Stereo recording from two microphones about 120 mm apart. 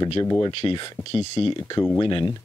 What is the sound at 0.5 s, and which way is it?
Speech, 45° left (ahead or behind).